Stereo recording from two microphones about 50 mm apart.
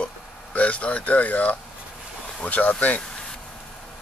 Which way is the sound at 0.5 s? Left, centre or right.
Left.